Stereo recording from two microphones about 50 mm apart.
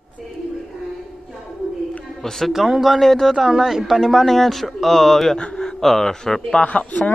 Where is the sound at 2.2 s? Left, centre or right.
Centre.